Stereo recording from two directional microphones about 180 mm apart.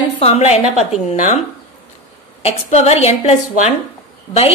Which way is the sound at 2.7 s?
35° left (ahead or behind).